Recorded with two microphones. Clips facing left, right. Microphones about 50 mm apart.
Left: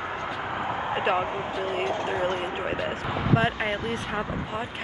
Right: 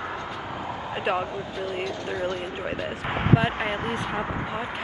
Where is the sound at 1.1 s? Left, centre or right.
Left.